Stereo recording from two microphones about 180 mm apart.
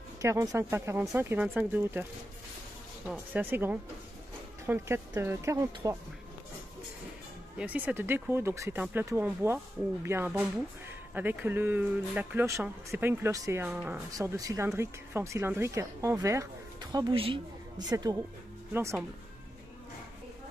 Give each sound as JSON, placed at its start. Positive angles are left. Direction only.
{"t": 0.2, "sound": "speech", "side_deg": -20}
{"t": 3.1, "sound": "speech", "side_deg": -10}
{"t": 7.5, "sound": "speech", "side_deg": -10}